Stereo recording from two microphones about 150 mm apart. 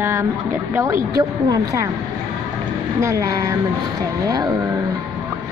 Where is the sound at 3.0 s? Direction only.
20° right (ahead or behind).